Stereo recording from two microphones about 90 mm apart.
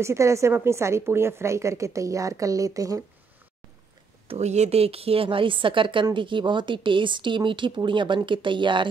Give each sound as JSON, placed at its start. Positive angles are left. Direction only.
{"t": 0.0, "sound": "a woman's voice", "side_deg": -35}
{"t": 4.3, "sound": "a woman's voice", "side_deg": -90}